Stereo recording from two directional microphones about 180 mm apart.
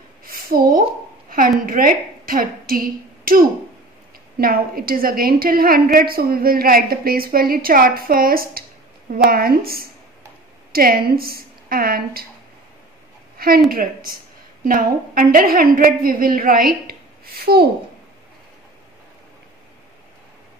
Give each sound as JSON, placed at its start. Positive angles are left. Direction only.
{"t": 0.3, "sound": "a sound", "side_deg": -55}
{"t": 1.7, "sound": "a woman's voice", "side_deg": -50}
{"t": 13.7, "sound": "a woman's voice", "side_deg": -55}